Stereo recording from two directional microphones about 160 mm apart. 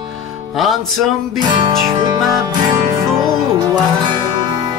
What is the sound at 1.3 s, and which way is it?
Music, 30° right (ahead or behind).